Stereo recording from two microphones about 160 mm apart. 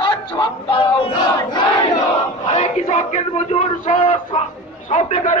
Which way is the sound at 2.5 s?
40° left (ahead or behind).